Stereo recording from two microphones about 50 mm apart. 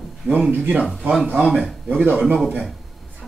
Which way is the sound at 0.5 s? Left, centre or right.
Right.